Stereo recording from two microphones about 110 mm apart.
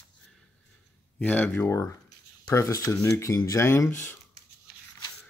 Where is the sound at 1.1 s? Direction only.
15° left (ahead or behind).